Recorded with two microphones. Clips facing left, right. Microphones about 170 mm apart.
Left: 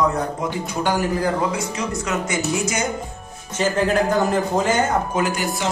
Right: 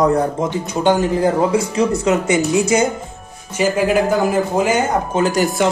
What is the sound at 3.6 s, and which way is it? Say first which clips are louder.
A man's voice: right 3 dB; 10° right (ahead or behind).